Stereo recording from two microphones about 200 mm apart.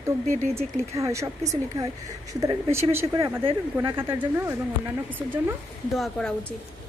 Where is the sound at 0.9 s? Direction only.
15° right (ahead or behind).